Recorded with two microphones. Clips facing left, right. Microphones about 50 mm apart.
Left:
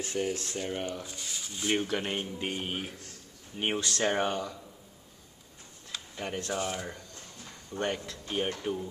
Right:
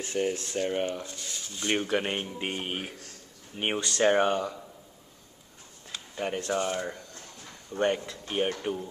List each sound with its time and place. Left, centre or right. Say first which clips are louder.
0.2 s speech: right 4 dB; centre
1.0 s speech: right 1 dB; centre
1.9 s speech: right 3 dB; right
6.1 s speech: right 5 dB; centre
6.5 s speech: right 5 dB; centre; by 8.8 s right